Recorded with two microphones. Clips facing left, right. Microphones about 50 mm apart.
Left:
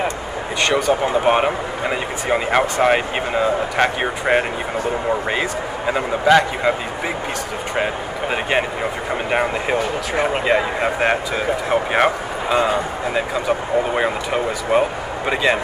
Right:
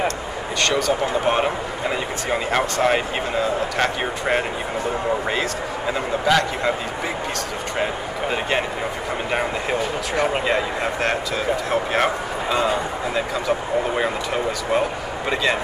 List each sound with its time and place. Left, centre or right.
0.6 s speech: centre
7.7 s speech: centre